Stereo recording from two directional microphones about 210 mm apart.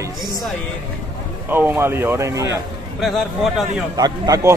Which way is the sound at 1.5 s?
10° right (ahead or behind).